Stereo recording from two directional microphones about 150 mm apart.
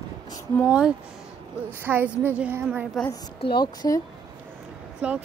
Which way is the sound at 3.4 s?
30° left (ahead or behind).